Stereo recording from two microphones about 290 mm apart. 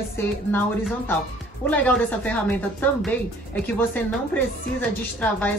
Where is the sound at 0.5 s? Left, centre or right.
Centre.